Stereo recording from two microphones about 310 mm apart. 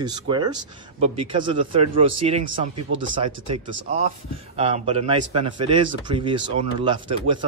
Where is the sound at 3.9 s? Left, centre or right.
Right.